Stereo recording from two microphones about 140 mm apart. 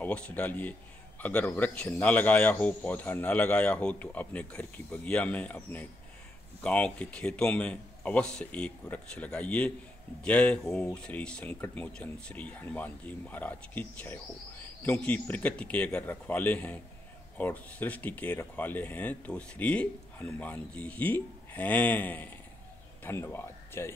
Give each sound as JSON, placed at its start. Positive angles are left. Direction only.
{"t": 0.0, "sound": "speech", "side_deg": 10}